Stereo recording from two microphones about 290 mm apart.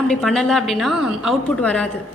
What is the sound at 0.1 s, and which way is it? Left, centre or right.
A woman's voice, centre.